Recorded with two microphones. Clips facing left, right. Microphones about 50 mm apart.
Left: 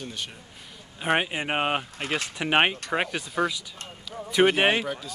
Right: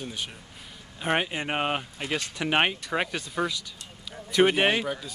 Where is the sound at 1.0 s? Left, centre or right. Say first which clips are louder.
Left 2 dB; centre.